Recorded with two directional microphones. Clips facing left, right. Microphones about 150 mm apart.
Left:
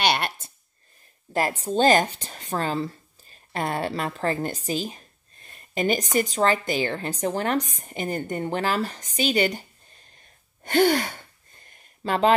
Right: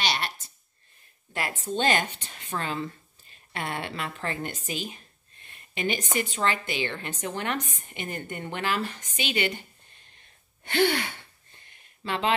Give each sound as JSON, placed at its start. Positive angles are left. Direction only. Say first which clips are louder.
{"t": 0.0, "sound": "a sound", "louder": "left 6 dB", "side_deg": 55}
{"t": 1.3, "sound": "speech", "louder": "left 6 dB", "side_deg": 35}
{"t": 10.6, "sound": "gasp", "louder": "left 5 dB", "side_deg": 45}